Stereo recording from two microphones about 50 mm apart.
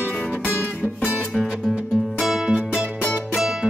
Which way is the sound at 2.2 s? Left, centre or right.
Centre.